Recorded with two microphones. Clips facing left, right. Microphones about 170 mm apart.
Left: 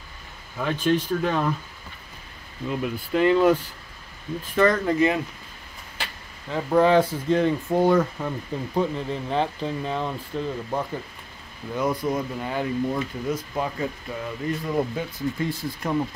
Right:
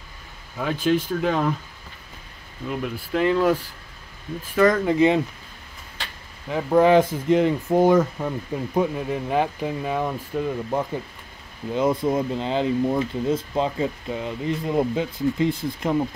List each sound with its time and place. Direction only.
0.8 s speech: 10° right (ahead or behind)
2.8 s speech: centre (ahead or behind)
4.6 s speech: 15° right (ahead or behind)
6.5 s speech: 15° right (ahead or behind)
11.7 s speech: 25° right (ahead or behind)